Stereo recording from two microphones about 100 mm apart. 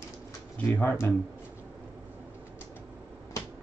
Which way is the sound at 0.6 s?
15° left (ahead or behind).